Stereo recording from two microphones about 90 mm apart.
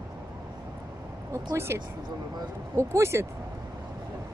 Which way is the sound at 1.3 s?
30° right (ahead or behind).